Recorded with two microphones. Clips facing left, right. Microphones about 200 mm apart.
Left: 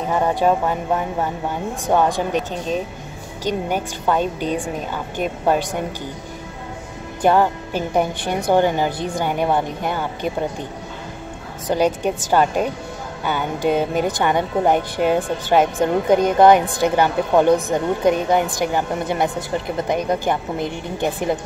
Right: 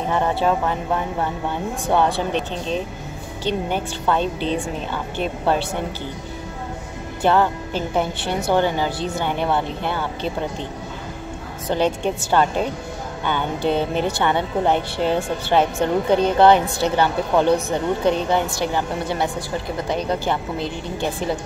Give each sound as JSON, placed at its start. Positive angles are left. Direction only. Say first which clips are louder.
{"t": 0.1, "sound": "a woman's voice", "louder": "left 3 dB", "side_deg": 15}
{"t": 1.9, "sound": "a woman's voice", "louder": "left 2 dB", "side_deg": 15}
{"t": 7.2, "sound": "a woman's voice", "louder": "left 2 dB", "side_deg": 15}
{"t": 11.6, "sound": "a woman's voice", "louder": "left 2 dB", "side_deg": 10}